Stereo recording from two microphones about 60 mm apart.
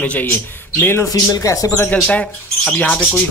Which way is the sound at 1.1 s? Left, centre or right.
Left.